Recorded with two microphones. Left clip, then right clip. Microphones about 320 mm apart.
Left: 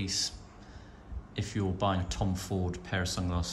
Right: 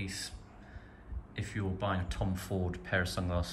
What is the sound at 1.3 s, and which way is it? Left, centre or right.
Speech, centre.